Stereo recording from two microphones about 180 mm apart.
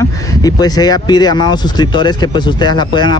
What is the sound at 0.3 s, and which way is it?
Speech, 20° left (ahead or behind).